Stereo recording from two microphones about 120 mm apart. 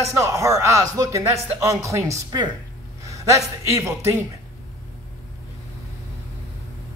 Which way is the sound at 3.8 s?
25° right (ahead or behind).